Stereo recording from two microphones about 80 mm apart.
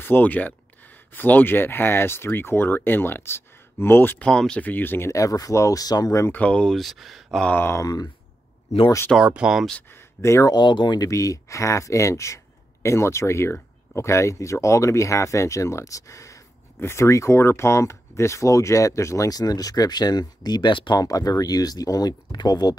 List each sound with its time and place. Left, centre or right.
0.0 s speech: left
4.2 s speech: centre; by 5.1 s left
5.1 s speech: left
6.3 s speech: centre
6.7 s speech: centre
7.5 s speech: left
7.8 s speech: left
9.1 s speech: centre
10.2 s speech: left
10.5 s speech: left
11.0 s speech: left
21.0 s speech: left